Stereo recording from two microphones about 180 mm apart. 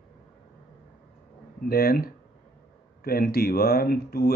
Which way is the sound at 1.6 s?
55° left (ahead or behind).